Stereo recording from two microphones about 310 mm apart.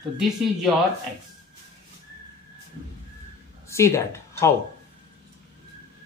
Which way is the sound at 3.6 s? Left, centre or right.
Centre.